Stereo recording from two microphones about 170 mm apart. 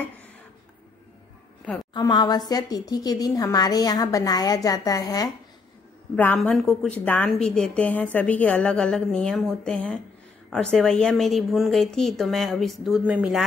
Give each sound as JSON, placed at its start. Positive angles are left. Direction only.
{"t": 2.0, "sound": "speech", "side_deg": 25}
{"t": 6.1, "sound": "a woman's voice", "side_deg": 5}